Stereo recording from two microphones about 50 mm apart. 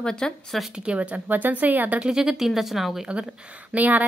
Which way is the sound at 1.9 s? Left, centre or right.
Centre.